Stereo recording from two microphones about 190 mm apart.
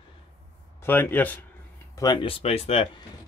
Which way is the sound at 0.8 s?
10° left (ahead or behind).